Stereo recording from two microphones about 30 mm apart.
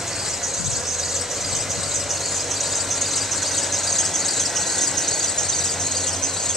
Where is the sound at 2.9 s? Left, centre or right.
Centre.